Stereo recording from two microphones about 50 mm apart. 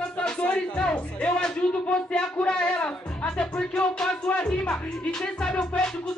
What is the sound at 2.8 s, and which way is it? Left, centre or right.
Music, left.